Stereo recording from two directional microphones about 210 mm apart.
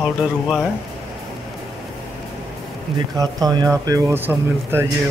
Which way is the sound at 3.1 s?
15° right (ahead or behind).